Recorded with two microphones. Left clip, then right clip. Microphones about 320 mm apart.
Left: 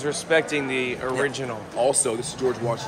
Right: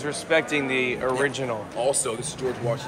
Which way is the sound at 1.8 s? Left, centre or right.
Left.